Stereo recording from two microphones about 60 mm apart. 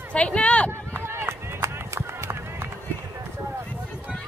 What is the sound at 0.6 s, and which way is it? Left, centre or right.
Run, right.